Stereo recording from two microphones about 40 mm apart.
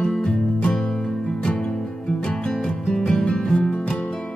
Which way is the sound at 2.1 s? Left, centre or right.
Left.